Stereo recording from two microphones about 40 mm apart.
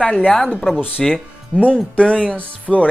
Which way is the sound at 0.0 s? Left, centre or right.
Left.